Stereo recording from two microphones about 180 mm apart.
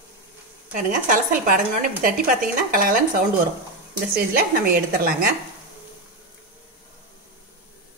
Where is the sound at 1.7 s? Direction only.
50° right (ahead or behind).